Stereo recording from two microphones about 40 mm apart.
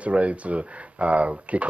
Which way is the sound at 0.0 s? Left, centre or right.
Right.